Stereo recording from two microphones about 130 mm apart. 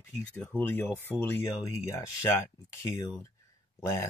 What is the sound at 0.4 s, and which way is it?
Speech, 15° left (ahead or behind).